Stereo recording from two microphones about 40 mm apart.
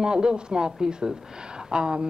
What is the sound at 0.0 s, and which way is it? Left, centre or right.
A woman's voice, right.